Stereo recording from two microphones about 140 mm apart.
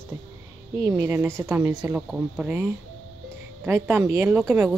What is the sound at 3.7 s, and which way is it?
A woman's voice, 15° right (ahead or behind).